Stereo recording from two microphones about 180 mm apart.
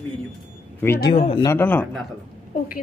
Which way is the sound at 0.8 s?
15° left (ahead or behind).